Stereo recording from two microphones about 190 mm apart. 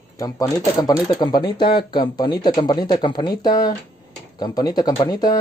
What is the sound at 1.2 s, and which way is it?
Speech, 25° left (ahead or behind).